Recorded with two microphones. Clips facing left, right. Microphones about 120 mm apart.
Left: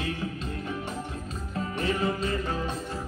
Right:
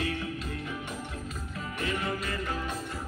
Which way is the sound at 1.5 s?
30° left (ahead or behind).